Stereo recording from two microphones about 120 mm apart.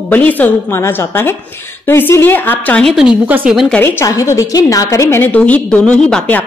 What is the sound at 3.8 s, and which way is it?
A woman's voice, 15° left (ahead or behind).